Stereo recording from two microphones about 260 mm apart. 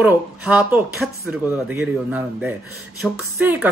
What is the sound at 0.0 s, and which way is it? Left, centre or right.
Speech, centre.